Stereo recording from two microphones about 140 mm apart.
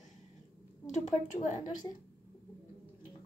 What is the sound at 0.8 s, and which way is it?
A woman's voice, 60° left (ahead or behind).